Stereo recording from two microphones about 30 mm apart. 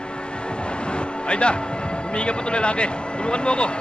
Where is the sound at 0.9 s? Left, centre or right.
Left.